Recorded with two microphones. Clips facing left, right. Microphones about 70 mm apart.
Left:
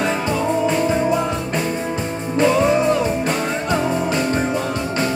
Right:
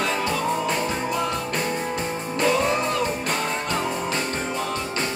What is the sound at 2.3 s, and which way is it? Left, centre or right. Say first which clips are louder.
Music: left 6 dB; left.